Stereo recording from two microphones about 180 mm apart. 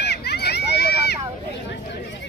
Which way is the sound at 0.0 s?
65° left (ahead or behind).